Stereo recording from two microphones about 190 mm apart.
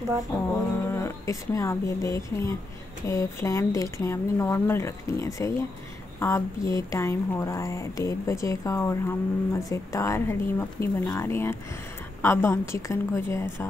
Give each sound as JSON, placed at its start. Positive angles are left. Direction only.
{"t": 0.9, "sound": "speech", "side_deg": 15}